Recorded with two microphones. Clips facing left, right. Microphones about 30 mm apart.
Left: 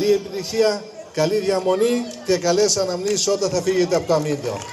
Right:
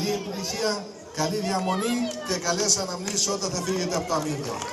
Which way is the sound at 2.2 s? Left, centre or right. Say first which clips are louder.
Left 11 dB; left.